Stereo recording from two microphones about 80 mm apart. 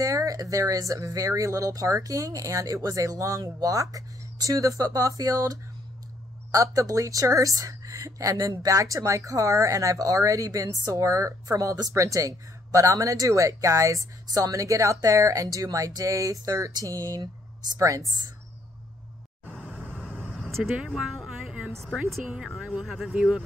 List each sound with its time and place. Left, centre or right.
0.0 s speech: right
19.4 s vehicle: centre
20.7 s a sound: centre
22.2 s speech: centre
23.1 s speech: centre